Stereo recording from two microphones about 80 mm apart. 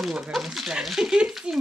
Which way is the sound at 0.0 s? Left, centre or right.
Centre.